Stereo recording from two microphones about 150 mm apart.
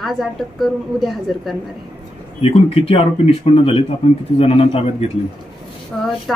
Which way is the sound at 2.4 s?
40° left (ahead or behind).